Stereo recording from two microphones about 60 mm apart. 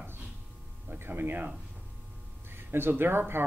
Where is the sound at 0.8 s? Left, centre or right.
Right.